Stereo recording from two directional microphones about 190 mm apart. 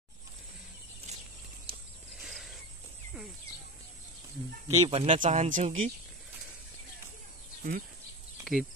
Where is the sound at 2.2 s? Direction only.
Centre (ahead or behind).